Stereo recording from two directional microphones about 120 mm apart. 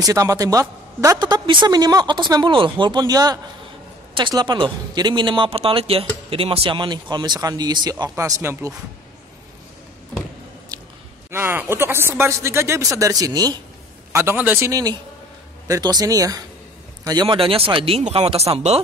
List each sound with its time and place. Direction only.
0.0 s a woman's voice: 30° right (ahead or behind)
8.2 s speech: 20° right (ahead or behind)
11.2 s speech: 20° right (ahead or behind)
14.1 s a man's voice: 15° right (ahead or behind); by 18.8 s 60° right (ahead or behind)